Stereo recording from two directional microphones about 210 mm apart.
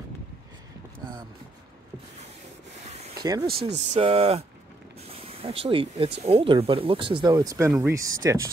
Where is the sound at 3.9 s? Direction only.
30° right (ahead or behind).